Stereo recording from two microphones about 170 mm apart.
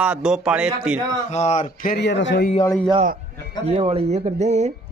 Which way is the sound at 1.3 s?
40° left (ahead or behind).